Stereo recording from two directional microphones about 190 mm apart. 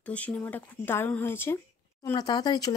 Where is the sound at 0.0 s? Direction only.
5° left (ahead or behind).